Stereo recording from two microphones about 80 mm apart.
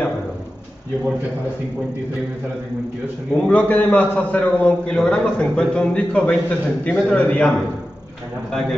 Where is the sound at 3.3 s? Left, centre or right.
Centre.